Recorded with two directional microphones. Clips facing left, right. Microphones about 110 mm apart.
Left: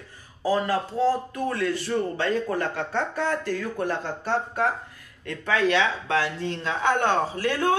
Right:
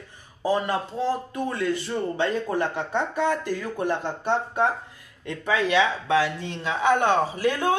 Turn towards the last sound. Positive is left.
turn(degrees=-15)  # may be behind; listen again after turning